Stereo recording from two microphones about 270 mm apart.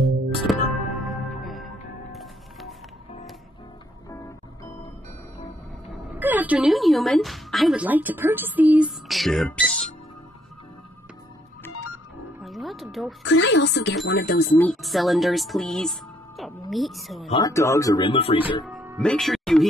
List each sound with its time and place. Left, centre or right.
0.0 s music: centre
5.9 s a woman's voice: centre
12.4 s music: centre
13.2 s a woman's voice: left
14.6 s speech: centre
17.3 s speech: centre
18.7 s music: centre